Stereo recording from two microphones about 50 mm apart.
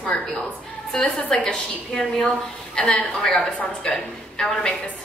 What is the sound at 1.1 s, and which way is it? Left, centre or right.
A woman's voice, centre.